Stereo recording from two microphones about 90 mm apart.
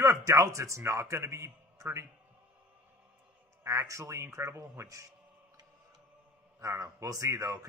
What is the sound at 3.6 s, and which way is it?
A man's voice, 35° right (ahead or behind).